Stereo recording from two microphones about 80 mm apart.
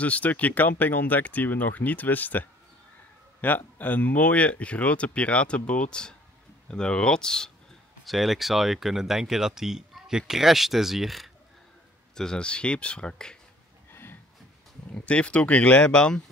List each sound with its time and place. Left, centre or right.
0.0 s speech: centre
12.2 s speech: centre
15.0 s speech: centre